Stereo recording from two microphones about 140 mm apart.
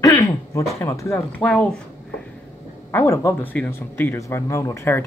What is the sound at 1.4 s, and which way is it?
Speech, 10° left (ahead or behind).